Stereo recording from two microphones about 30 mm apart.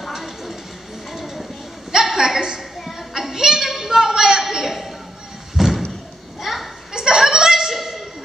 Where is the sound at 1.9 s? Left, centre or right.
Centre.